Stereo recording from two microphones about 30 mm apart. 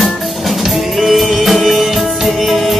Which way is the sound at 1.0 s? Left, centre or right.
Centre.